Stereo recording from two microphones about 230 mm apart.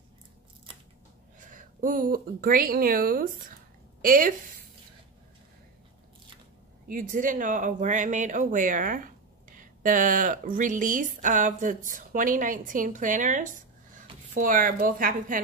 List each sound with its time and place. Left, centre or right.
1.4 s speech: right
6.9 s speech: right